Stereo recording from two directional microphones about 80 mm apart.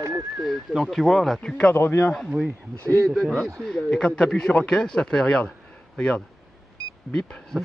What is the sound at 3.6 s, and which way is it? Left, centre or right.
Speech, centre.